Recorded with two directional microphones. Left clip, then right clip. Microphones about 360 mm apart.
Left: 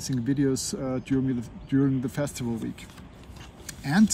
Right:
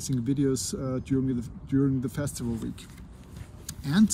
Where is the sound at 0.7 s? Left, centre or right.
Left.